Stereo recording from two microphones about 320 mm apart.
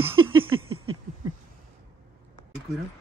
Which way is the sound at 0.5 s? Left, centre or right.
Right.